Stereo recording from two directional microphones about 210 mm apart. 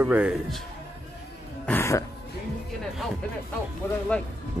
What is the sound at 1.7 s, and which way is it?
Throat clearing, 10° left (ahead or behind).